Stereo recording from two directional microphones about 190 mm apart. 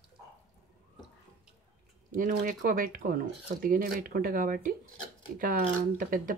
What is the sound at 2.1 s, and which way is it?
Speech, 45° right (ahead or behind).